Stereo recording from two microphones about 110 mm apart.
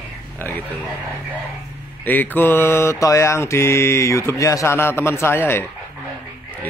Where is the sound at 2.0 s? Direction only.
15° left (ahead or behind).